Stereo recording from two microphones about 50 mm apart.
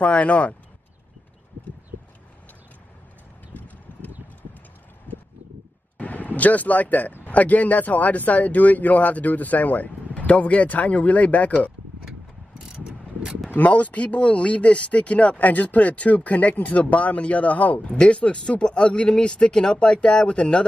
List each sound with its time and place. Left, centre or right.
0.0 s speech: left
3.5 s a sound: left
5.9 s vehicle: left
7.2 s speech: left
13.5 s speech: left